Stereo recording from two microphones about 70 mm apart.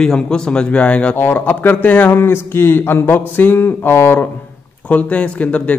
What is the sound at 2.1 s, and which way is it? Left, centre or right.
Speech, left.